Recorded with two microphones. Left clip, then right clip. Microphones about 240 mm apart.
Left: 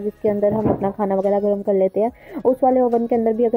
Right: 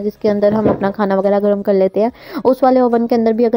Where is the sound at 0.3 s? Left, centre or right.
Centre.